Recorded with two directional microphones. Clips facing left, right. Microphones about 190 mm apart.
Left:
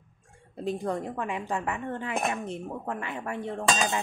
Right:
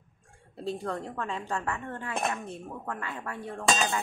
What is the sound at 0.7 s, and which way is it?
Speech, 15° left (ahead or behind).